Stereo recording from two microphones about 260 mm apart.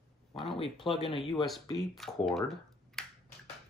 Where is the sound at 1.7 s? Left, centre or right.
Centre.